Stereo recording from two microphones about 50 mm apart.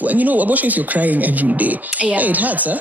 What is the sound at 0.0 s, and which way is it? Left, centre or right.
Speech, right.